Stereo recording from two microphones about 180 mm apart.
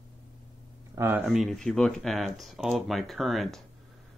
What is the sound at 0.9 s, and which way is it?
Speech, 15° right (ahead or behind).